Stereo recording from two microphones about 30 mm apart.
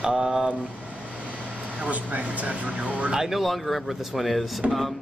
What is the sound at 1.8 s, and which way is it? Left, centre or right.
Speech, right.